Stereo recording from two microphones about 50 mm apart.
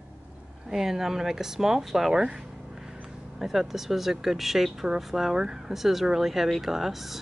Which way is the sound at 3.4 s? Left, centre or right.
Centre.